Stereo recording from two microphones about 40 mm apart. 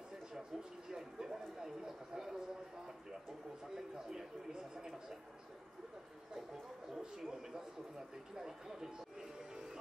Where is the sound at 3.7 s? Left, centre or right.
Centre.